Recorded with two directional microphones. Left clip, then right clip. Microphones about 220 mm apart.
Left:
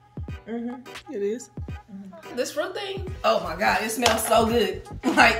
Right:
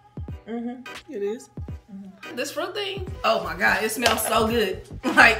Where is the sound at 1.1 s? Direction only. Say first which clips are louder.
Left 1 dB; 25° left (ahead or behind).